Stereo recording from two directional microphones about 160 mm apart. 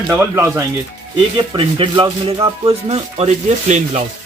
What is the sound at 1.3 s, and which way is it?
Speech, 30° right (ahead or behind).